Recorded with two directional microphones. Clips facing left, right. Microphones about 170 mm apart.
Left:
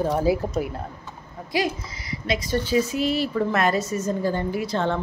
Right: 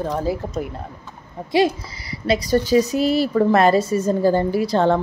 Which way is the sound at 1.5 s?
30° right (ahead or behind).